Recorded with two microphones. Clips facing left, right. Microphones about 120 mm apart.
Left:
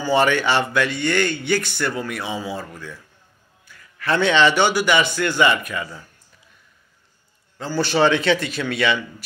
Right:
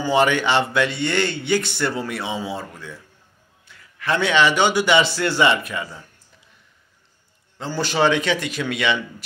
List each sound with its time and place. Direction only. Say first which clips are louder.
0.0 s a man's voice: even; 15° right (ahead or behind)
7.5 s a man's voice: left 2 dB; 20° right (ahead or behind)